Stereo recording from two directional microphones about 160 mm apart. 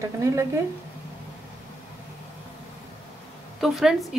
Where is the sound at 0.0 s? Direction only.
20° right (ahead or behind).